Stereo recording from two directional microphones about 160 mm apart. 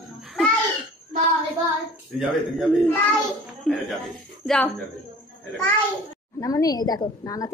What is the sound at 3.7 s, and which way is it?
Speech, 5° left (ahead or behind).